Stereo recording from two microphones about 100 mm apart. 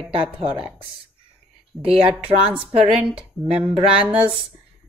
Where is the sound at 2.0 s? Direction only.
10° right (ahead or behind).